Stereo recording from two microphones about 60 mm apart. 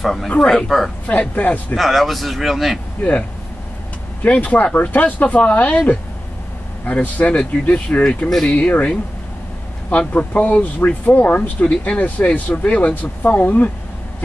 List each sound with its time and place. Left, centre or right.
0.0 s a man's voice: centre
1.3 s speech: left
1.8 s a man's voice: centre
3.0 s speech: left